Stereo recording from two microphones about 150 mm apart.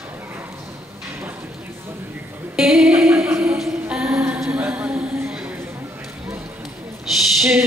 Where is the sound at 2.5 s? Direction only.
5° right (ahead or behind).